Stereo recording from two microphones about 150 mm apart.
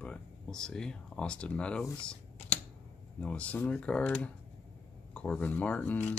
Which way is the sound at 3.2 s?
10° left (ahead or behind).